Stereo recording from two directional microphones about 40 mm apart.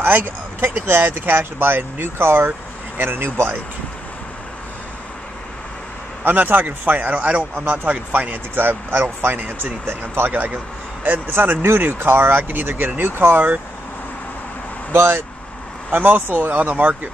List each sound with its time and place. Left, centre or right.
0.0 s speech: right
3.0 s speech: right
6.2 s speech: right
10.3 s speech: right
12.4 s speech: right
13.1 s speech: right
14.9 s speech: right
15.9 s speech: right